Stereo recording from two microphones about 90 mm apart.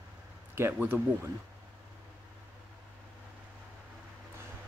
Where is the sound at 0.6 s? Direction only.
25° right (ahead or behind).